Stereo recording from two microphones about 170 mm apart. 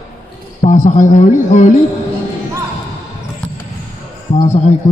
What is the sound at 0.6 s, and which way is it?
Speech, 45° left (ahead or behind).